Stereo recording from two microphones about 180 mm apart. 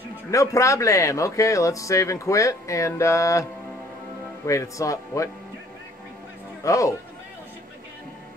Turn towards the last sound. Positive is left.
turn(degrees=15)  # may be behind; listen again after turning